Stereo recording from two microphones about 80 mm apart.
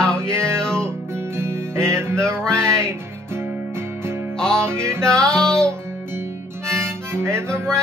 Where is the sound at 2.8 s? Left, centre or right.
Right.